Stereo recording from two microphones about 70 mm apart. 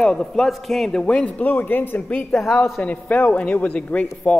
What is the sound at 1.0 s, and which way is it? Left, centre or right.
A man's voice, centre.